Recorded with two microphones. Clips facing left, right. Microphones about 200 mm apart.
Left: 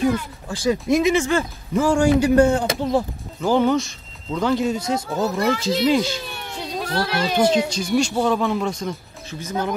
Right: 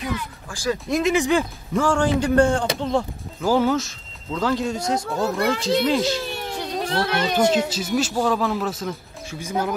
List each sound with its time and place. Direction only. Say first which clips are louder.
0.5 s speech: left 4 dB; 20° left (ahead or behind)
0.8 s speech: left 1 dB; centre (ahead or behind)
3.4 s speech: left 1 dB; 5° right (ahead or behind)
6.8 s a sound: even; 25° right (ahead or behind)
7.2 s speech: left 2 dB; 5° left (ahead or behind)